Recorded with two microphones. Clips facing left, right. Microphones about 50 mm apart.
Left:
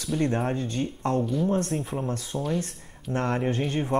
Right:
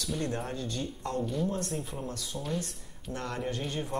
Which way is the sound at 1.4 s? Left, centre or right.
Left.